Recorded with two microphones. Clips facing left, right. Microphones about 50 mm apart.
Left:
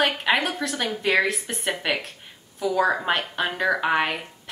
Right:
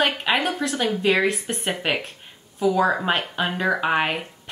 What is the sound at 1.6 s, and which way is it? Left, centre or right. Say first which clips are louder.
A woman's voice: right 1 dB; centre.